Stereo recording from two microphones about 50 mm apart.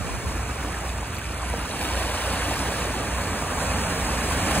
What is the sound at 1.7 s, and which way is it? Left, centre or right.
Waterfall, left.